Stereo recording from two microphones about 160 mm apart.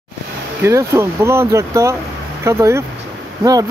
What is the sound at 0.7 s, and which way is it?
Speech, 15° right (ahead or behind).